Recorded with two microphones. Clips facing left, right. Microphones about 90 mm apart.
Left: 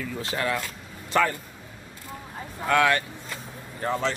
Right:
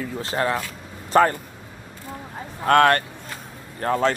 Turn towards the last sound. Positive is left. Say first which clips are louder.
# right 5 dB
turn(degrees=-50)  # may be behind; listen again after turning